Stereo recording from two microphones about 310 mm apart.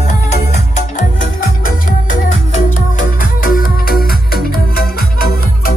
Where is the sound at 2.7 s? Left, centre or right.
Left.